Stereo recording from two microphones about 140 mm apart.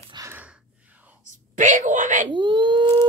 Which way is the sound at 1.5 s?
65° right (ahead or behind).